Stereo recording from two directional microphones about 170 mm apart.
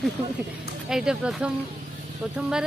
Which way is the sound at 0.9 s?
5° right (ahead or behind).